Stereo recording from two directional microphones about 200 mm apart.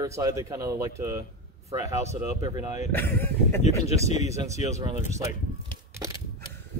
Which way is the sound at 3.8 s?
30° left (ahead or behind).